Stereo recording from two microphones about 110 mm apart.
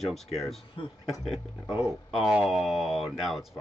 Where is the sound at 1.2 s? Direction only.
5° right (ahead or behind).